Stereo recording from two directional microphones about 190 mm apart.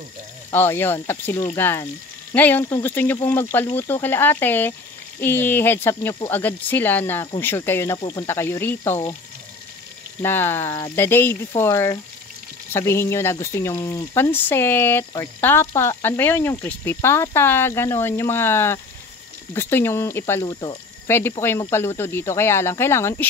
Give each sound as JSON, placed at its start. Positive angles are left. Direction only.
{"t": 0.5, "sound": "speech", "side_deg": 10}
{"t": 10.2, "sound": "speech", "side_deg": 10}